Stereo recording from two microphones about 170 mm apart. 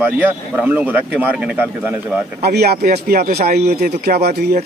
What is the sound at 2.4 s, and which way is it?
A man's voice, 70° right (ahead or behind).